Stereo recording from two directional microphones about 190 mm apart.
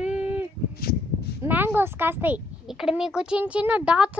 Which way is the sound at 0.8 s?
55° left (ahead or behind).